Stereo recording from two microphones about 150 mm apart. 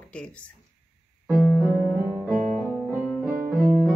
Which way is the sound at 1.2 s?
Centre (ahead or behind).